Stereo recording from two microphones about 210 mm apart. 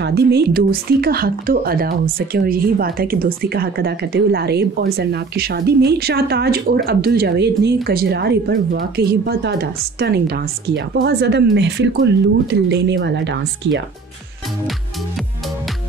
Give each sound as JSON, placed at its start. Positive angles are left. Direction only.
{"t": 0.0, "sound": "speech", "side_deg": -50}